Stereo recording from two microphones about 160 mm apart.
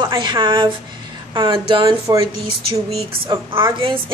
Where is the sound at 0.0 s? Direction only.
30° right (ahead or behind).